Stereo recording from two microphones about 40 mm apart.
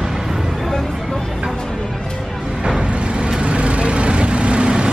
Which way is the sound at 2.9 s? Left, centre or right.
Right.